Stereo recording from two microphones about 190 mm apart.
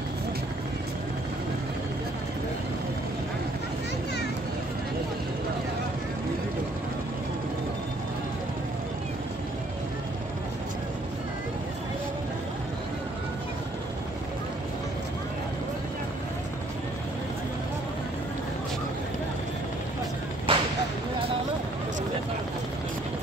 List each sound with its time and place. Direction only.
20.5 s whip: 25° right (ahead or behind)